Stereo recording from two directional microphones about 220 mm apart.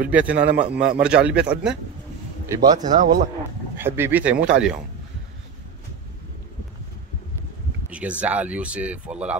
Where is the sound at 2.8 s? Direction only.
35° right (ahead or behind).